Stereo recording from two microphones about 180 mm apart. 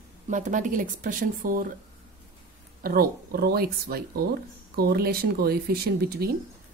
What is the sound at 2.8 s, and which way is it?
Speech, 55° right (ahead or behind).